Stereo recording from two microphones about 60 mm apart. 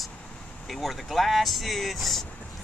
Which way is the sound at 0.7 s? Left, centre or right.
Centre.